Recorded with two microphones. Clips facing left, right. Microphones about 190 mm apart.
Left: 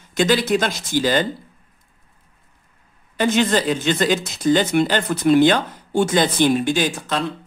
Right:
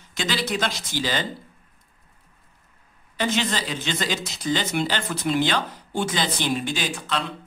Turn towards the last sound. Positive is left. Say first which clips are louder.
# left 6 dB
turn(degrees=45)  # may be behind; listen again after turning